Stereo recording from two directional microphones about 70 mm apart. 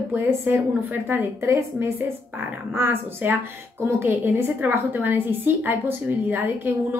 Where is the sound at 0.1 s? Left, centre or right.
Right.